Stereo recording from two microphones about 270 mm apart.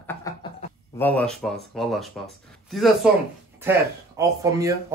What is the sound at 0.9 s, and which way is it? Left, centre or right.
Speech, centre.